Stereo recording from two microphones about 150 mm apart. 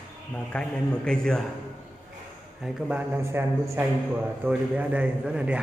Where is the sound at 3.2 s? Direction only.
20° right (ahead or behind).